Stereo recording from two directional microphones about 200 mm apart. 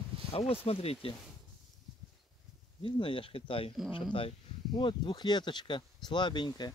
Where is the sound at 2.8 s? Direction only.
25° left (ahead or behind).